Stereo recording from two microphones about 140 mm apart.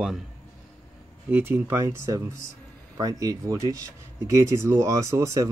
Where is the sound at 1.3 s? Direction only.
15° right (ahead or behind).